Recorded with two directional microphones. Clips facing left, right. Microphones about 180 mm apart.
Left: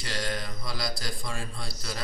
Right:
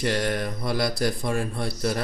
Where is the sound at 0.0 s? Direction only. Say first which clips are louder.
Right 9 dB; 60° right (ahead or behind).